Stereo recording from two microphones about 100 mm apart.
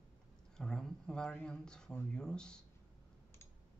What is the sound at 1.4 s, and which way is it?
Speech, 5° left (ahead or behind).